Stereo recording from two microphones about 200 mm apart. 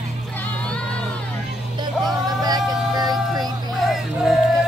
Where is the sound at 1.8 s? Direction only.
20° right (ahead or behind).